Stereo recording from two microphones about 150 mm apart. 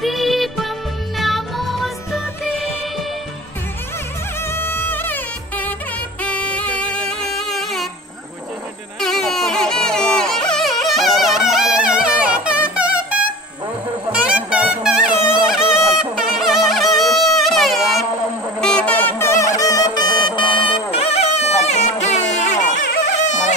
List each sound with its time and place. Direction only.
0.0 s music: centre (ahead or behind)
4.5 s music: 15° left (ahead or behind)
9.0 s music: centre (ahead or behind); by 23.5 s 50° left (ahead or behind)